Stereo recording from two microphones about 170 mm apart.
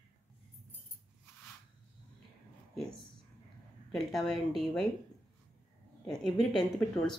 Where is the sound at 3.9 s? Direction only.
Centre (ahead or behind).